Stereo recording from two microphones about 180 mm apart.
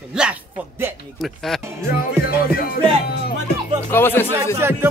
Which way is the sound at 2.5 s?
55° left (ahead or behind).